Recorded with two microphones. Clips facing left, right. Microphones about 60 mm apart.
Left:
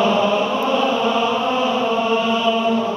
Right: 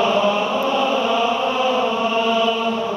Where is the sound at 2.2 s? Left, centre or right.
Centre.